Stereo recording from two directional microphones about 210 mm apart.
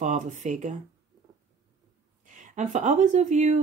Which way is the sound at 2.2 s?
35° right (ahead or behind).